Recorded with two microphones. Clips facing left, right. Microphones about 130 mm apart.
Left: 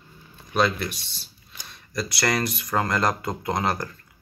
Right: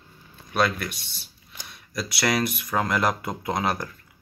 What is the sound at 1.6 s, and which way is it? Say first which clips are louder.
Speech: left 2 dB; 5° right (ahead or behind).